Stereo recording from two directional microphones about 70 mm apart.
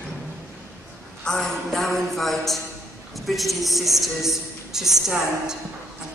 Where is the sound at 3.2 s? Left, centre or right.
Centre.